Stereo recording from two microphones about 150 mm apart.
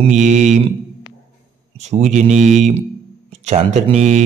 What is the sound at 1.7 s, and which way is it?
A man's voice, 50° right (ahead or behind).